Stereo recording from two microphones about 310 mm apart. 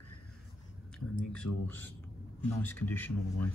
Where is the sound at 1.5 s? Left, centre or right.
Left.